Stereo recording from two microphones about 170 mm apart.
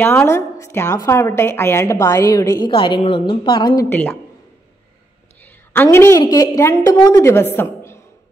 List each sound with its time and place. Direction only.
0.0 s a woman's voice: 15° left (ahead or behind)
3.9 s a woman's voice: 10° left (ahead or behind)
5.4 s a woman's voice: 15° left (ahead or behind)
7.5 s a sound: 15° left (ahead or behind)